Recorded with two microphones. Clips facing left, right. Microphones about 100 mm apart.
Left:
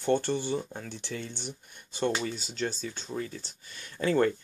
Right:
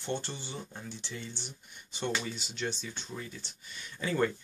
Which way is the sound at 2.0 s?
40° left (ahead or behind).